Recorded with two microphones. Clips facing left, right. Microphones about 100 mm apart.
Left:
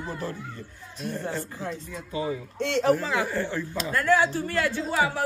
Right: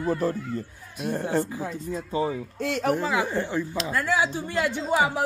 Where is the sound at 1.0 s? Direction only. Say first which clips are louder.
Right 6 dB; 55° right (ahead or behind).